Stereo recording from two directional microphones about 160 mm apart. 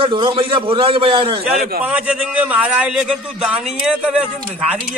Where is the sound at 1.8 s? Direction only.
10° right (ahead or behind).